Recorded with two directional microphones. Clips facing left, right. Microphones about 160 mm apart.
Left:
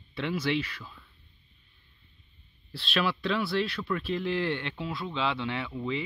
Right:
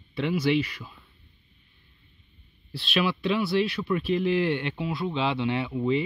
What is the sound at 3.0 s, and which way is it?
Speech, 5° right (ahead or behind).